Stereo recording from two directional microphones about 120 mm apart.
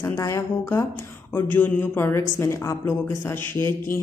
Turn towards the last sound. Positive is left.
turn(degrees=20)  # may be behind; listen again after turning